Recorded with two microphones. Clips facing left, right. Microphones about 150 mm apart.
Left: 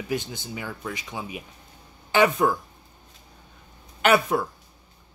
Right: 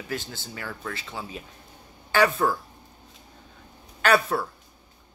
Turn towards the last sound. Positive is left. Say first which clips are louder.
# left 2 dB
turn(degrees=20)  # may be behind; listen again after turning